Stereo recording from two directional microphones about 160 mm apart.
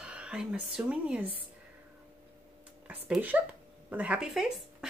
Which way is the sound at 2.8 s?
5° right (ahead or behind).